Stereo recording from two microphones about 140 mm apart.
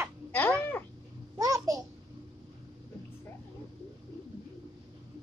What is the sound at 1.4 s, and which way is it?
Babbling, 25° right (ahead or behind).